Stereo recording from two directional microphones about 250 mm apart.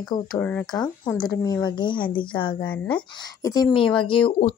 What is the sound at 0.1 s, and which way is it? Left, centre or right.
Speech, centre.